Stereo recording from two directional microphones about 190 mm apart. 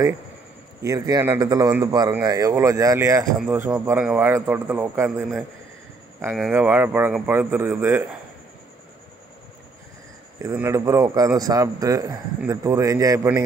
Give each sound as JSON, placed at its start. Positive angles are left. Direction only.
{"t": 0.8, "sound": "speech", "side_deg": -20}
{"t": 6.3, "sound": "speech", "side_deg": -5}
{"t": 10.4, "sound": "speech", "side_deg": -15}